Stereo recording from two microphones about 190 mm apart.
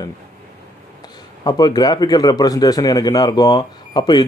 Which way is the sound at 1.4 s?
20° left (ahead or behind).